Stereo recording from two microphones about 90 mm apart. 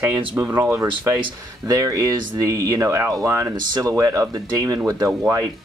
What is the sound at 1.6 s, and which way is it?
Speech, 40° right (ahead or behind).